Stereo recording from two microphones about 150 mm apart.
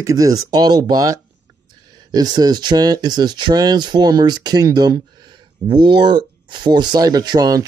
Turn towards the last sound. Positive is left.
turn(degrees=-25)  # may be behind; listen again after turning